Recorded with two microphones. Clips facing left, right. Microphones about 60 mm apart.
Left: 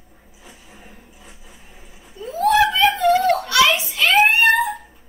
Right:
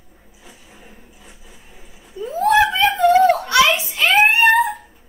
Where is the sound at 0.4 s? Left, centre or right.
Centre.